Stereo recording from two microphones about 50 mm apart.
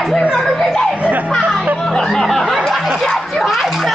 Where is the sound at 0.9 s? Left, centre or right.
Right.